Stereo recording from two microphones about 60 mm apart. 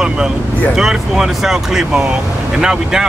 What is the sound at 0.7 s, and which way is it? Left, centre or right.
Speech, centre.